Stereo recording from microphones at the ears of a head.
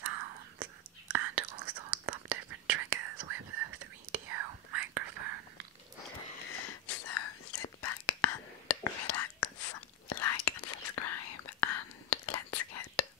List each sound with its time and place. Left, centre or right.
0.0 s whispering: right
6.4 s whispering: left